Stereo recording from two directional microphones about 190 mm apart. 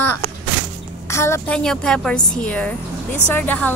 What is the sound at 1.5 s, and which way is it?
A woman's voice, 5° left (ahead or behind).